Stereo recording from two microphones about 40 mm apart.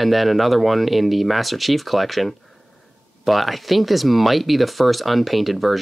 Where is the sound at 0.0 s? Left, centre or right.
Centre.